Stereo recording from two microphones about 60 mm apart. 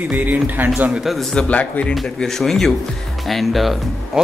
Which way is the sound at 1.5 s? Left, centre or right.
Left.